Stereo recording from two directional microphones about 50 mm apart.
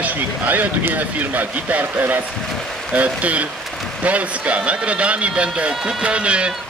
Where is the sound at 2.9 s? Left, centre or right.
Right.